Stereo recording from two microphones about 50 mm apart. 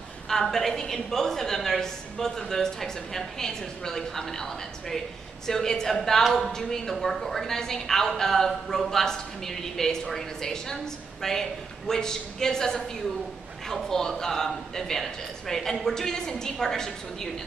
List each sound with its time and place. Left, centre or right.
0.3 s a woman's voice: centre